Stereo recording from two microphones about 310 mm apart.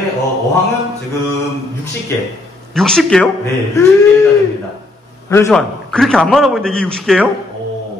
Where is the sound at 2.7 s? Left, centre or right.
Centre.